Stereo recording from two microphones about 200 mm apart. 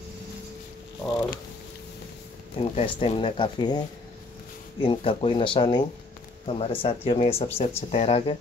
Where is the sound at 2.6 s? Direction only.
30° left (ahead or behind).